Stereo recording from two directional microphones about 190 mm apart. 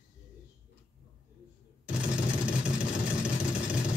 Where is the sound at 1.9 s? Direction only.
5° right (ahead or behind).